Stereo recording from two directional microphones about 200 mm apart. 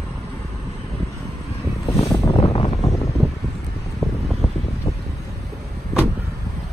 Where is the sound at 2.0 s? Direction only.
25° left (ahead or behind).